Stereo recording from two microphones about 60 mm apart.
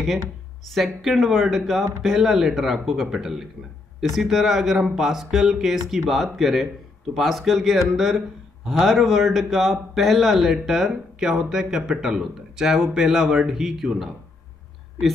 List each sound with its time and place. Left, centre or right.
0.7 s a man's voice: centre